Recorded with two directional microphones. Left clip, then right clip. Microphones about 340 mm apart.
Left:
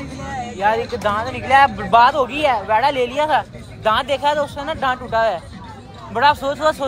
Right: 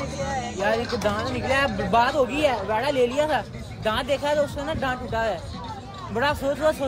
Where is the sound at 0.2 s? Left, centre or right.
Centre.